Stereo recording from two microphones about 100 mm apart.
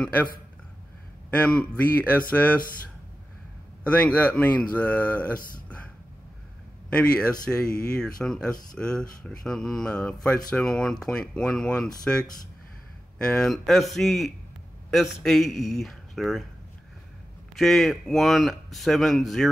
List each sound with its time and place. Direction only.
0.0 s speech: 15° left (ahead or behind)
1.3 s speech: 10° left (ahead or behind)
3.8 s speech: 15° left (ahead or behind)
6.9 s speech: 10° left (ahead or behind)
17.6 s speech: 5° left (ahead or behind)